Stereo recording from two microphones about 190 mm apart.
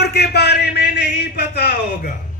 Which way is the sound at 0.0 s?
60° left (ahead or behind).